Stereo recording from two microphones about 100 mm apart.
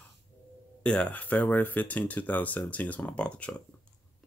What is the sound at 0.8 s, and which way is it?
Speech, 10° left (ahead or behind).